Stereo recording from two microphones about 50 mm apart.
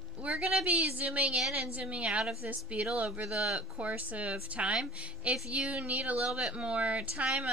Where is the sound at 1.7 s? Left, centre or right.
Right.